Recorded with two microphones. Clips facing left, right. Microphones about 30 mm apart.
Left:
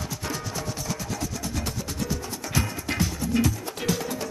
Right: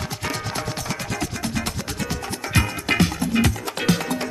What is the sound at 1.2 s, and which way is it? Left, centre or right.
Music, right.